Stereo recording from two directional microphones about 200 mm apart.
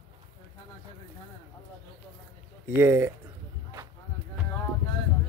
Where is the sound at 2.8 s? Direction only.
10° right (ahead or behind).